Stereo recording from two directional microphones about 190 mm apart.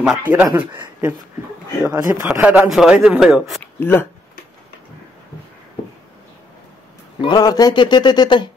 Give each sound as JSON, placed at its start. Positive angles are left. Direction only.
{"t": 0.0, "sound": "speech", "side_deg": -5}
{"t": 3.8, "sound": "speech", "side_deg": 10}
{"t": 7.2, "sound": "a man's voice", "side_deg": 20}